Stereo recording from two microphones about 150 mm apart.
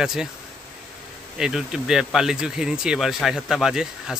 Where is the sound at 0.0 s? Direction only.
5° right (ahead or behind).